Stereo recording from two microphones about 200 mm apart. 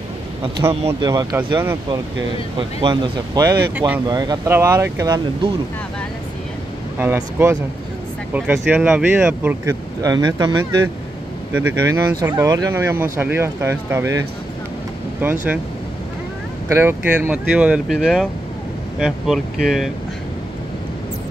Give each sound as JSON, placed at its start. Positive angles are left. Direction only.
{"t": 1.0, "sound": "speech", "side_deg": -20}
{"t": 4.1, "sound": "speech", "side_deg": -20}
{"t": 7.0, "sound": "speech", "side_deg": -10}
{"t": 16.7, "sound": "speech", "side_deg": -10}